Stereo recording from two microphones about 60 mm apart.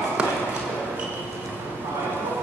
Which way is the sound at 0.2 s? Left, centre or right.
Centre.